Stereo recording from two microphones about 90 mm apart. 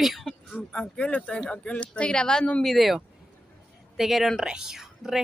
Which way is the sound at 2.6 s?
Centre (ahead or behind).